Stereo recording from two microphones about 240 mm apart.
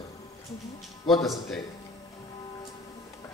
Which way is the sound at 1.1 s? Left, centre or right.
Centre.